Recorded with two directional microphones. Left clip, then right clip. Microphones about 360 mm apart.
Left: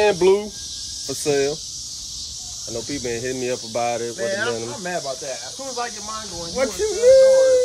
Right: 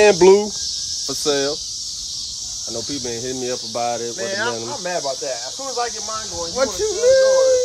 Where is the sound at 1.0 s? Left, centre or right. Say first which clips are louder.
Even; centre.